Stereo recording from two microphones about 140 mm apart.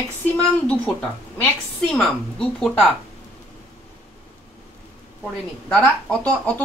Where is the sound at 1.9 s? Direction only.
5° left (ahead or behind).